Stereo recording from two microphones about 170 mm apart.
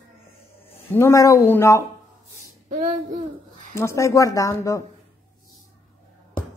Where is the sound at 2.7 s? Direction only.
50° right (ahead or behind).